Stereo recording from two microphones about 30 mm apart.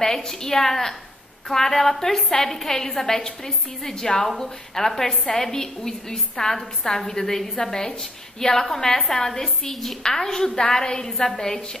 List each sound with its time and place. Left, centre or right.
0.0 s a woman's voice: centre